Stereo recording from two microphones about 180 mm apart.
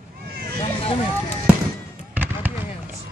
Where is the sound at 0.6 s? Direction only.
30° left (ahead or behind).